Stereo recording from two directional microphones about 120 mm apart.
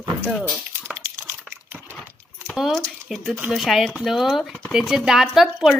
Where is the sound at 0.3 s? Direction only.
5° left (ahead or behind).